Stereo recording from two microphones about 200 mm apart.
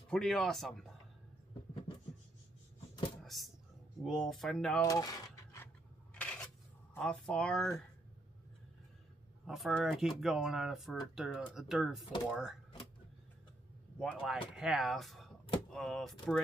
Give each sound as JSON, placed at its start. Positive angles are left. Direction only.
{"t": 0.1, "sound": "speech", "side_deg": 0}
{"t": 3.3, "sound": "a sound", "side_deg": 0}
{"t": 4.0, "sound": "speech", "side_deg": 0}
{"t": 4.8, "sound": "a sound", "side_deg": 20}
{"t": 6.1, "sound": "coin", "side_deg": 5}
{"t": 9.5, "sound": "speech", "side_deg": 0}
{"t": 13.9, "sound": "speech", "side_deg": 0}